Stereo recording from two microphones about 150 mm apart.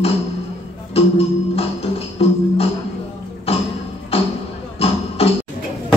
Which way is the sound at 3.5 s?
40° left (ahead or behind).